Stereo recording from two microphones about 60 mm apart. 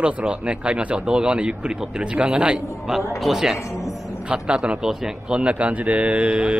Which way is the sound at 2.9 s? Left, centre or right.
Centre.